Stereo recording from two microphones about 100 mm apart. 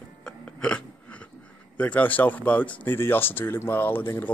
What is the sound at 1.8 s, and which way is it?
Speech, 15° left (ahead or behind).